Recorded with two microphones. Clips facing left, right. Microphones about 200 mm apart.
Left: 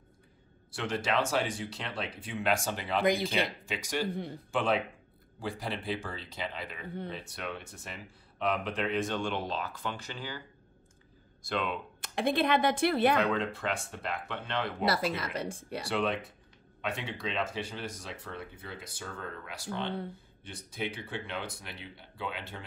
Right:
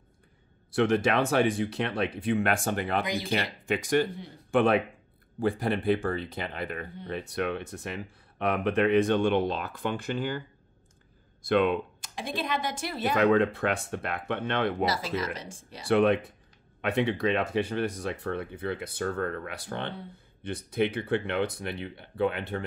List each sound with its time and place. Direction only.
0.7 s speech: 60° right (ahead or behind)
3.0 s speech: 55° left (ahead or behind)
3.3 s speech: 55° right (ahead or behind)
11.4 s speech: 55° right (ahead or behind)
12.0 s a woman's voice: 60° left (ahead or behind)
13.2 s speech: 60° right (ahead or behind)
14.9 s a woman's voice: 60° left (ahead or behind)
15.9 s speech: 55° right (ahead or behind)